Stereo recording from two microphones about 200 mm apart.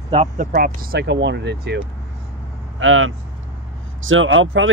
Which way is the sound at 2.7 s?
80° right.